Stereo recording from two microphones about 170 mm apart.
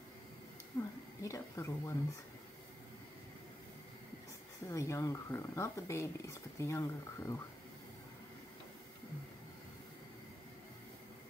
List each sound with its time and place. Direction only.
0.7 s speech: 20° left (ahead or behind)
4.6 s speech: 15° left (ahead or behind)